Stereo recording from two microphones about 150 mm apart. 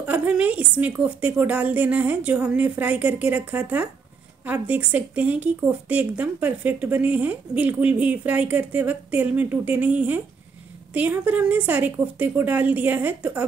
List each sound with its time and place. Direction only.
0.0 s speech: 10° right (ahead or behind)